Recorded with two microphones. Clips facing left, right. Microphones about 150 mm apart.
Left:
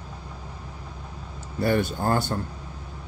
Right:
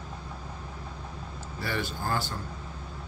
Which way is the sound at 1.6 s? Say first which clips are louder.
Left 10 dB; 50° left (ahead or behind).